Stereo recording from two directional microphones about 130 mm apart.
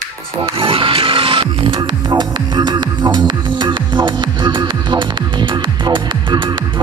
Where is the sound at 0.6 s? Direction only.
45° right (ahead or behind).